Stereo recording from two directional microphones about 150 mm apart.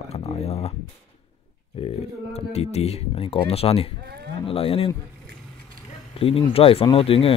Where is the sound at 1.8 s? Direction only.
40° left (ahead or behind).